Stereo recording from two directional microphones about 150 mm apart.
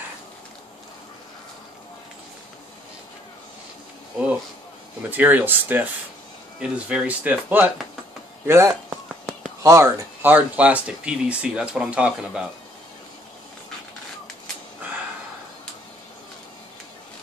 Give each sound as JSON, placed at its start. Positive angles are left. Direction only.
{"t": 5.1, "sound": "speech", "side_deg": -10}